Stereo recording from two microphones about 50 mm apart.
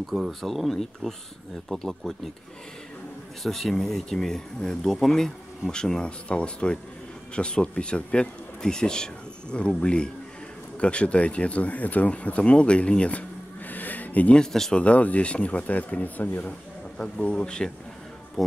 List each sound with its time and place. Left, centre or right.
0.3 s speech: centre
3.4 s speech: centre; by 13.2 s left
13.7 s a sound: left
14.3 s speech: centre
14.8 s speech: left
17.2 s speech: left